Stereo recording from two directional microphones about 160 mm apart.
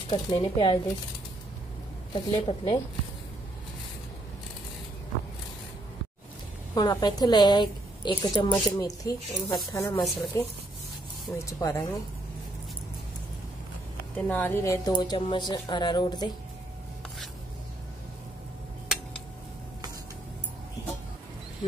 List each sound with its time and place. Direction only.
0.1 s speech: 35° left (ahead or behind)
2.1 s speech: 35° left (ahead or behind)
6.7 s a woman's voice: 25° left (ahead or behind)
14.1 s a woman's voice: 10° left (ahead or behind); by 16.3 s 25° left (ahead or behind)